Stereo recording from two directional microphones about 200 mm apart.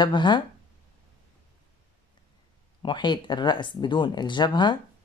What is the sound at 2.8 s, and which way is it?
Speech, 25° left (ahead or behind).